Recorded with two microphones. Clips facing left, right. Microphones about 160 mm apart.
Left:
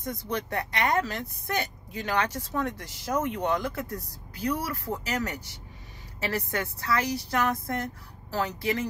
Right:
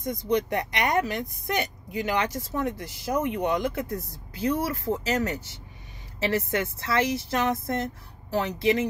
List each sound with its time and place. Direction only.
0.1 s speech: 15° right (ahead or behind)